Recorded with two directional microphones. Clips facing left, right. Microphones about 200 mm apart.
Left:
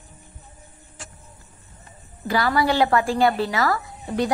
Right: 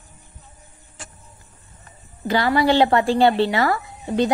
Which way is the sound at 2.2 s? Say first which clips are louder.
Right 3 dB; 25° right (ahead or behind).